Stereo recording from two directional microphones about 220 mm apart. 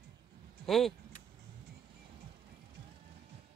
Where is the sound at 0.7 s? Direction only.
Centre (ahead or behind).